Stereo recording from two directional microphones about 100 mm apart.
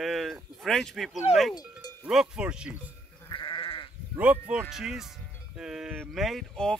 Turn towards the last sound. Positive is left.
turn(degrees=5)  # may be behind; listen again after turning